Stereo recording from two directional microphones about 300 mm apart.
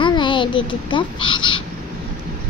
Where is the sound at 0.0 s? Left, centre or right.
Centre.